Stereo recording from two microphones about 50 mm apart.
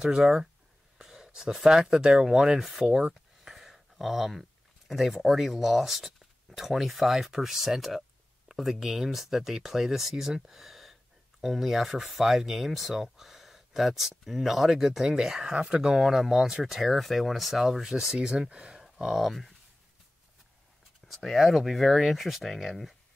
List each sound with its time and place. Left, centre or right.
0.0 s speech: centre
18.8 s speech: centre
21.1 s speech: centre